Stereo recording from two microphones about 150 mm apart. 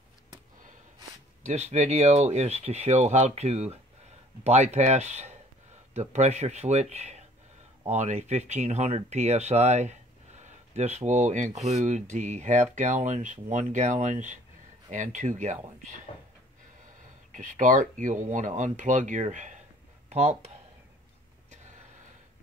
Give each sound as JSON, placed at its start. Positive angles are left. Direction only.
{"t": 1.4, "sound": "speech", "side_deg": -45}
{"t": 17.3, "sound": "speech", "side_deg": -60}